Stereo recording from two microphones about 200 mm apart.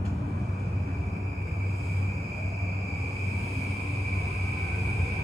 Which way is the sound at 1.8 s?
Centre (ahead or behind).